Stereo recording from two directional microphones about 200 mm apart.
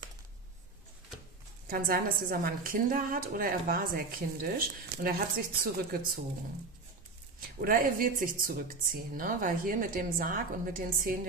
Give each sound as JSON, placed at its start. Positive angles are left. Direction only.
{"t": 1.7, "sound": "speech", "side_deg": -45}
{"t": 7.3, "sound": "speech", "side_deg": -45}